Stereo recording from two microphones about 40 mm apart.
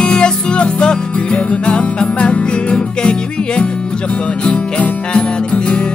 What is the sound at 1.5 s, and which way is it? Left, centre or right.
Music, left.